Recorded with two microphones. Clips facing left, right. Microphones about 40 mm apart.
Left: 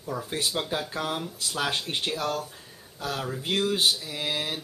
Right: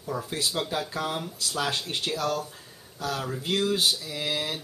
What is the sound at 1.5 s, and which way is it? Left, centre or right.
Speech, centre.